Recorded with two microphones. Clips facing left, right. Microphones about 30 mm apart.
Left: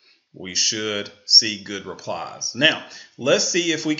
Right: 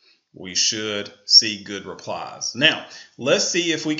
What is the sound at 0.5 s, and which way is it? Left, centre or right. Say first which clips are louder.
Speech: even; centre.